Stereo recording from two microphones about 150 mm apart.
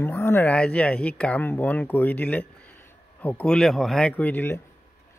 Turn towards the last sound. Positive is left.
turn(degrees=15)  # may be behind; listen again after turning